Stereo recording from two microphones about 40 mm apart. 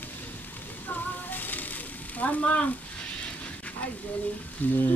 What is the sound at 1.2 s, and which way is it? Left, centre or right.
Sizzle, left.